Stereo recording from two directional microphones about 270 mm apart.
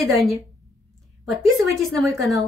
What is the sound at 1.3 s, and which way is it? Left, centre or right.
Speech, centre.